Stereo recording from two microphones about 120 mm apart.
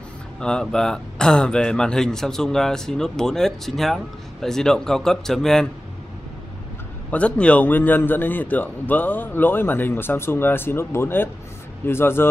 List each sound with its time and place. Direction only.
0.4 s speech: 5° left (ahead or behind)
7.1 s a man's voice: 10° left (ahead or behind)